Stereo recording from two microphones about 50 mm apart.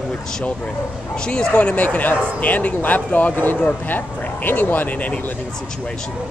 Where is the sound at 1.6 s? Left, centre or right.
Left.